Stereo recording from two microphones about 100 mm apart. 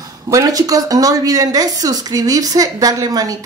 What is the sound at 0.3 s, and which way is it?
Speech, 35° right (ahead or behind).